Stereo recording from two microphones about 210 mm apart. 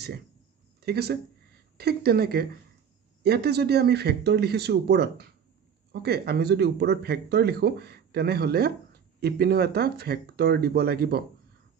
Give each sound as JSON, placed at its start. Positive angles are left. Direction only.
{"t": 0.8, "sound": "speech", "side_deg": -50}